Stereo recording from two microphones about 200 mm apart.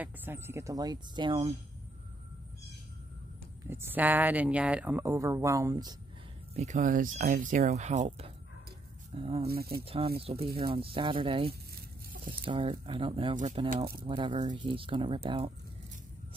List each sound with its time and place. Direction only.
0.0 s speech: 10° right (ahead or behind)
3.6 s speech: 10° right (ahead or behind)
6.5 s speech: 35° right (ahead or behind)
9.5 s speech: 50° right (ahead or behind)
9.8 s speech: 30° right (ahead or behind)